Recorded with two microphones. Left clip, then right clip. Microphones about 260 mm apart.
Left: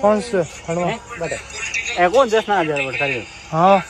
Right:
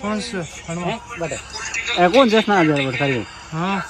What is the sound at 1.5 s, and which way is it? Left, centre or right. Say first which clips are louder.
Radio: left 2 dB; centre.